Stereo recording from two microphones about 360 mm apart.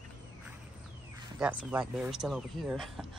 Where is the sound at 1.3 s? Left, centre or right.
Centre.